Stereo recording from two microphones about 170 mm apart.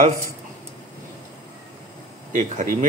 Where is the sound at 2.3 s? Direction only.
45° right (ahead or behind).